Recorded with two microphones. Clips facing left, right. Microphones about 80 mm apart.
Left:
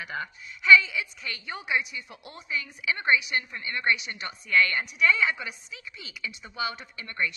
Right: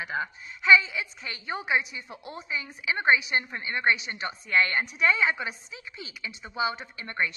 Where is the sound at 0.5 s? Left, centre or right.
Right.